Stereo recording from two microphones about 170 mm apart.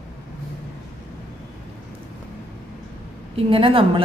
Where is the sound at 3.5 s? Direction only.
30° right (ahead or behind).